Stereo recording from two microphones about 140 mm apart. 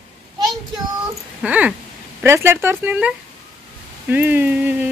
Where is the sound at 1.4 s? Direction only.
10° right (ahead or behind).